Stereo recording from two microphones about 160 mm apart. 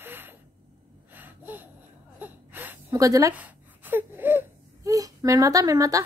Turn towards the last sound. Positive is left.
turn(degrees=-20)  # may be behind; listen again after turning